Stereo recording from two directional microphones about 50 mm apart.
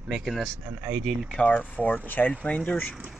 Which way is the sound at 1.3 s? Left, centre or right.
Left.